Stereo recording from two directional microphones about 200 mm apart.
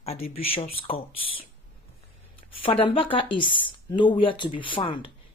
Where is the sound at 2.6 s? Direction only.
25° left (ahead or behind).